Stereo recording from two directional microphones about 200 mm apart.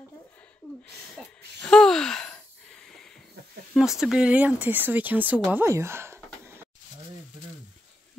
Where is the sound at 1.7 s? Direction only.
5° left (ahead or behind).